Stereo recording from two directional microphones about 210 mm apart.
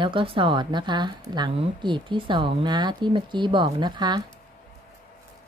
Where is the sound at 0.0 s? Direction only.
25° right (ahead or behind).